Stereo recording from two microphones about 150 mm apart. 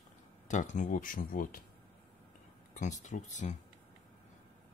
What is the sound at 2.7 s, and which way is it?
Speech, 55° left (ahead or behind).